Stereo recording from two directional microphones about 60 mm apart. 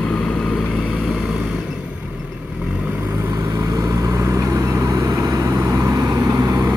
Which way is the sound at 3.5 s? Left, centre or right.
Right.